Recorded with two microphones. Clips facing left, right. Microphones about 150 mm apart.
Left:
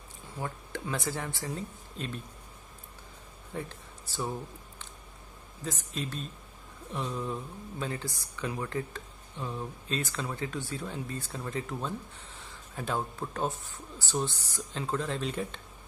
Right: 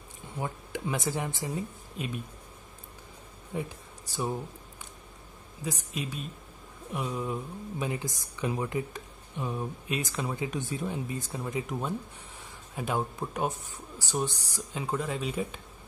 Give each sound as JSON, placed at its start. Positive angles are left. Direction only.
{"t": 0.4, "sound": "speech", "side_deg": -15}
{"t": 3.5, "sound": "speech", "side_deg": -15}
{"t": 5.6, "sound": "speech", "side_deg": -10}